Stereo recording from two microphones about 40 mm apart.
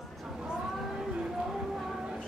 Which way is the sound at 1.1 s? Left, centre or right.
Centre.